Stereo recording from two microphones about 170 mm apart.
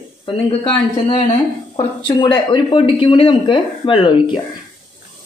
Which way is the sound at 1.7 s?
25° left (ahead or behind).